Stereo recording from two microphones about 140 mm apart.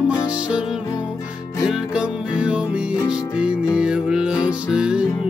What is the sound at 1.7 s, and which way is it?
Music, 5° right (ahead or behind).